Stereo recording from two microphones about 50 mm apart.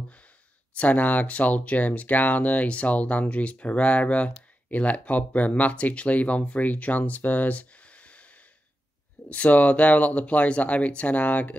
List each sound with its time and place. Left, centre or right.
0.7 s speech: left
9.3 s speech: left